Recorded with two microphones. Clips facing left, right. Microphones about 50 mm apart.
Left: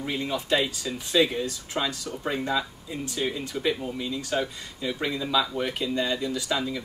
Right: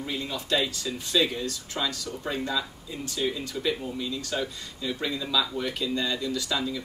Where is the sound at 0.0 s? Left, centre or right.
Left.